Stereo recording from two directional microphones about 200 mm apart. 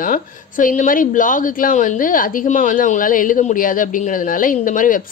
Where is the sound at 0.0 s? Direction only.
40° left (ahead or behind).